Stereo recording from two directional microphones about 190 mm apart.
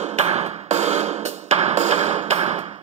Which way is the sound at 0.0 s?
35° right (ahead or behind).